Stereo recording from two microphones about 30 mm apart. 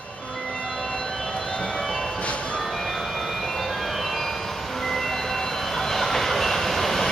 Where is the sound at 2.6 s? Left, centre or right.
Centre.